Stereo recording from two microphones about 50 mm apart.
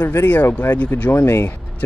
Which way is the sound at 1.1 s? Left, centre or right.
Left.